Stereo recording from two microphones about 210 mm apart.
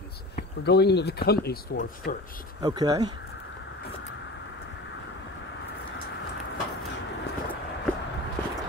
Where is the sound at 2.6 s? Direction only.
20° right (ahead or behind).